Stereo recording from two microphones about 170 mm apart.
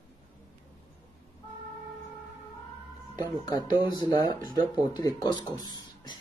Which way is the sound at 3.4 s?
25° left (ahead or behind).